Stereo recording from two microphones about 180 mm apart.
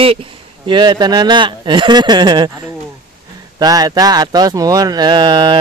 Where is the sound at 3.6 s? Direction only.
20° right (ahead or behind).